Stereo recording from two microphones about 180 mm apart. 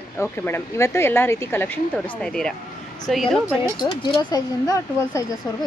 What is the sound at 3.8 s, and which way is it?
Speech, 25° left (ahead or behind).